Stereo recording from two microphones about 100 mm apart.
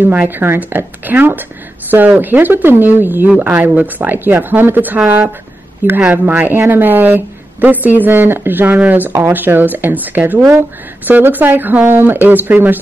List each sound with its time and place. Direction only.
0.0 s speech: 15° right (ahead or behind)